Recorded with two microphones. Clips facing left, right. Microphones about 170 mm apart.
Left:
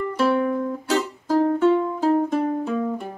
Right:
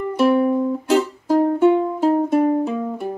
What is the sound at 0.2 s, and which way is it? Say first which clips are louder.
Music: right 5 dB; 15° right (ahead or behind).